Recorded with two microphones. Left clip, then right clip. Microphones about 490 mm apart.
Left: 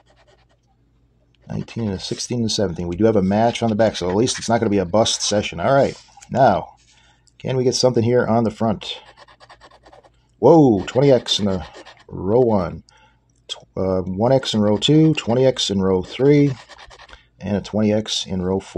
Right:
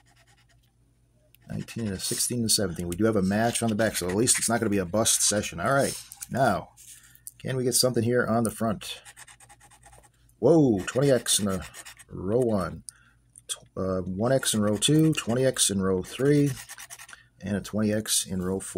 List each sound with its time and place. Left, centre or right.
1.5 s speech: right
10.4 s speech: right